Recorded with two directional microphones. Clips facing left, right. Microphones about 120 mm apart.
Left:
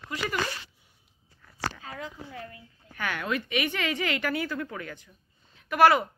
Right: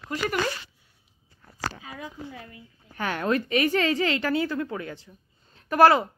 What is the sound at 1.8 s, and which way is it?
Speech, 15° right (ahead or behind).